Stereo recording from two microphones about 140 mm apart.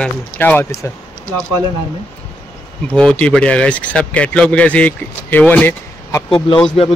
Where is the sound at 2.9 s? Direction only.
5° left (ahead or behind).